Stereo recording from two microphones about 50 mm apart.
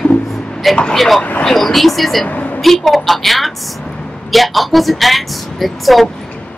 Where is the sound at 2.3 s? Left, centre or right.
Left.